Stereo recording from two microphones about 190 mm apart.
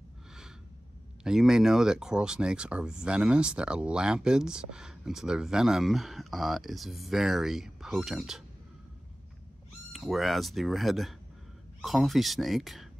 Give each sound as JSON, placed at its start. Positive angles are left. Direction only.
{"t": 1.2, "sound": "speech", "side_deg": -5}
{"t": 9.9, "sound": "speech", "side_deg": 0}